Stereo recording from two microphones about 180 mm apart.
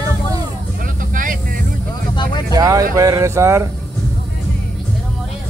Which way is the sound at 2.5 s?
20° right (ahead or behind).